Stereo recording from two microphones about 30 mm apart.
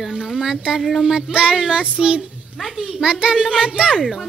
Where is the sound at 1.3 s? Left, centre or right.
Right.